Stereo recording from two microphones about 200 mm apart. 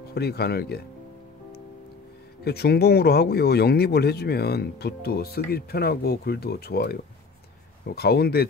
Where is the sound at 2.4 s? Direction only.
55° left (ahead or behind).